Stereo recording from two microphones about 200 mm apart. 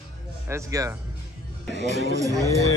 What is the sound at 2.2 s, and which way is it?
Speech, 15° right (ahead or behind).